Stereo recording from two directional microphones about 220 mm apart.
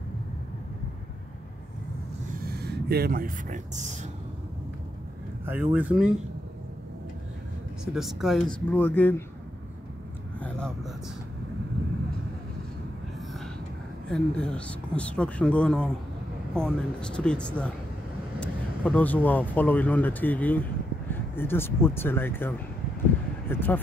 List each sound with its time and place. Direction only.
2.4 s speech: 45° right (ahead or behind)
5.4 s speech: 10° right (ahead or behind)
7.8 s speech: centre (ahead or behind)
10.4 s a sound: 5° left (ahead or behind)
14.0 s speech: 5° left (ahead or behind)